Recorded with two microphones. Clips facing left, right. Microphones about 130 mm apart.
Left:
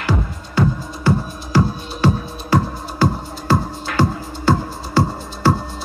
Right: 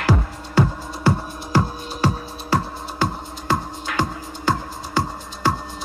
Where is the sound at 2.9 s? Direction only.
15° right (ahead or behind).